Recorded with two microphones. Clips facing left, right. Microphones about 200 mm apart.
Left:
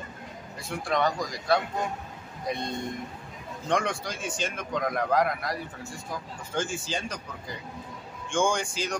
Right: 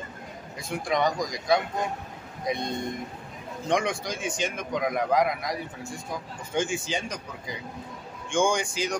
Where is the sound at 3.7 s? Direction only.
15° right (ahead or behind).